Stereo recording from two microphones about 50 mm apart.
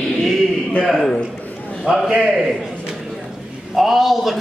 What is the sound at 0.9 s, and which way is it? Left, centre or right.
Speech, centre.